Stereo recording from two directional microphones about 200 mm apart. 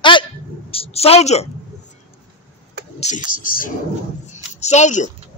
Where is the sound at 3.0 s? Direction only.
35° left (ahead or behind).